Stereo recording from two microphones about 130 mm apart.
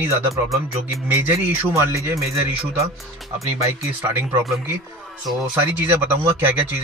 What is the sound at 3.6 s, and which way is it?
Speech, 20° right (ahead or behind).